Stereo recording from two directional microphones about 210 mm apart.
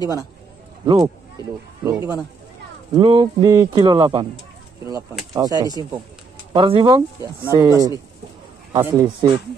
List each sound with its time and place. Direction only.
0.8 s a man's voice: 20° right (ahead or behind)
5.3 s a man's voice: 15° right (ahead or behind)